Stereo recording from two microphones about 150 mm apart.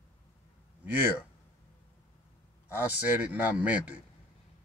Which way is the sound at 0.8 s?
10° right (ahead or behind).